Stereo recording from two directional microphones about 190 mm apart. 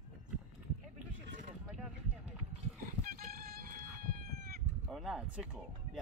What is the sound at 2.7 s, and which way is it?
Fowl, 50° right (ahead or behind).